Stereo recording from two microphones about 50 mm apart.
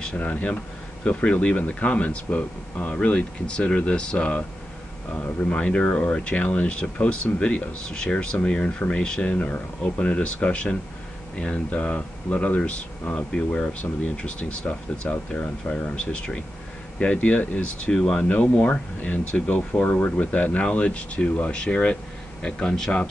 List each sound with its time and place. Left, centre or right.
0.1 s speech: left
5.5 s speech: left
9.3 s speech: left
10.0 s speech: left
16.1 s speech: left
17.9 s speech: centre
18.4 s a man's voice: left; by 23.0 s centre